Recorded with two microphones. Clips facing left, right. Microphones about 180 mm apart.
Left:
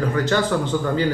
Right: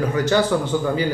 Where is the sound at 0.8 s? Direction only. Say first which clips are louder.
Even; 10° right (ahead or behind).